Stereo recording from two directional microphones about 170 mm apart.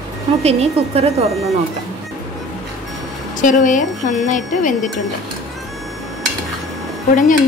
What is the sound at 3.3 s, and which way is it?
Speech, 50° left (ahead or behind).